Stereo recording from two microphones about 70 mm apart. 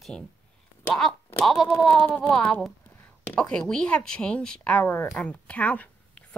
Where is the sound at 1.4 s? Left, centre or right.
Centre.